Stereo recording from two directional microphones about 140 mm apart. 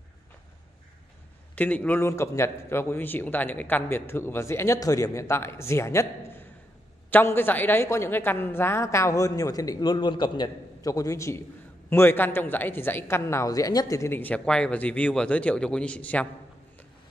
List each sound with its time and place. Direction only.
1.5 s a man's voice: 10° left (ahead or behind)